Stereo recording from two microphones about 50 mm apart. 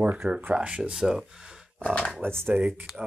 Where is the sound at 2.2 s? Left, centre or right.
Right.